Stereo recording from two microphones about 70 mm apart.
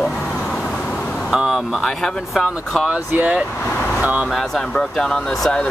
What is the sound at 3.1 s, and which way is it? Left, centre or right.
Speech, centre.